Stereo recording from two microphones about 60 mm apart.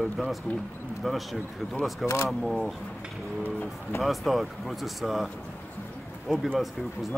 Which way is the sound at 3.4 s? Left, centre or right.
Left.